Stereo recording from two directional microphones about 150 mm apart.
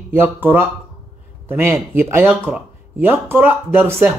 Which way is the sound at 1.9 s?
15° right (ahead or behind).